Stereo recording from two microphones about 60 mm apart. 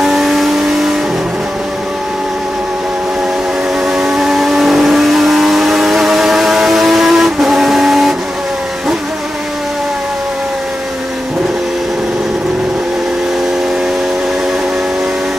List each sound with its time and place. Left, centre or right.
0.0 s vehicle: centre
3.8 s vehicle: centre